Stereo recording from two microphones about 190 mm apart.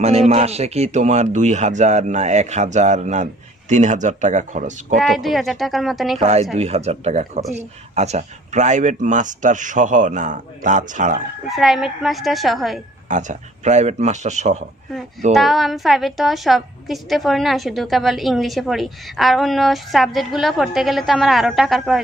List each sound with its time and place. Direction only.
0.0 s speech: 35° right (ahead or behind)
5.0 s a woman's voice: centre (ahead or behind)
6.1 s speech: 35° right (ahead or behind)
11.4 s a woman's voice: centre (ahead or behind)
13.1 s speech: 40° right (ahead or behind)
15.3 s a woman's voice: centre (ahead or behind)